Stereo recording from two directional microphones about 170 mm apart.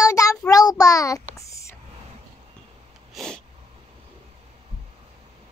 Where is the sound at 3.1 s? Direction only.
Centre (ahead or behind).